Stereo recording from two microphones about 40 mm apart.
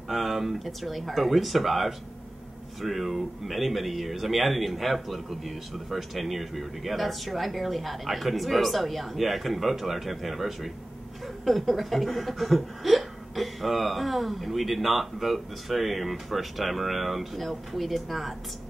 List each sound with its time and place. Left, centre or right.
0.1 s a man's voice: centre